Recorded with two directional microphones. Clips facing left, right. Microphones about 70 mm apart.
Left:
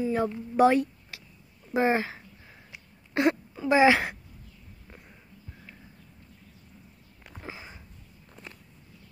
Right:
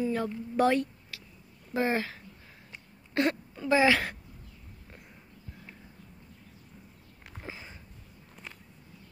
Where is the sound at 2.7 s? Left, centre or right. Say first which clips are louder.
Left 3 dB; centre.